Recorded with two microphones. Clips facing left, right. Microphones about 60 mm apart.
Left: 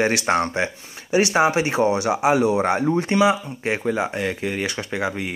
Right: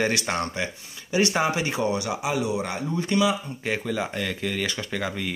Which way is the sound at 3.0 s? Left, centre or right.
Left.